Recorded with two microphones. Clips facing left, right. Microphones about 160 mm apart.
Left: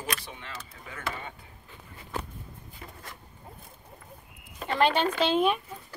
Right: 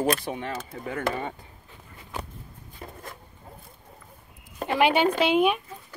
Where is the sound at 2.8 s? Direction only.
40° right (ahead or behind).